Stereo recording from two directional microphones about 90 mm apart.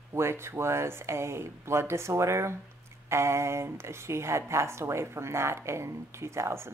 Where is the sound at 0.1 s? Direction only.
30° right (ahead or behind).